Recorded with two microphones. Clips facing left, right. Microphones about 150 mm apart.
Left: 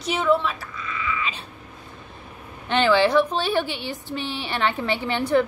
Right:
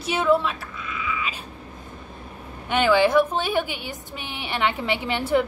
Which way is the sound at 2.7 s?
10° right (ahead or behind).